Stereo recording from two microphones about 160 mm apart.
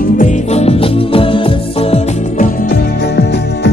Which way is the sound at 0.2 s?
45° left (ahead or behind).